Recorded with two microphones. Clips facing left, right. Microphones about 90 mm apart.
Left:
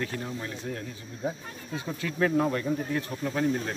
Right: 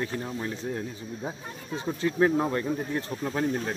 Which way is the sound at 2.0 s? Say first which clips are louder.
Right 2 dB; 30° right (ahead or behind).